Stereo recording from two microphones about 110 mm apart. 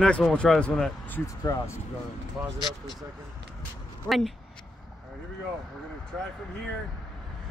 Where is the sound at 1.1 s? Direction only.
30° left (ahead or behind).